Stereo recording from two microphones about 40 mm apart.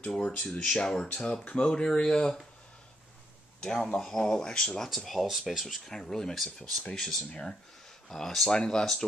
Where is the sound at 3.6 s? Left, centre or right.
Centre.